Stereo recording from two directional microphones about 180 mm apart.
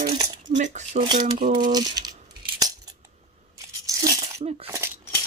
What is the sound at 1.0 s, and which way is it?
Cutlery, 25° right (ahead or behind).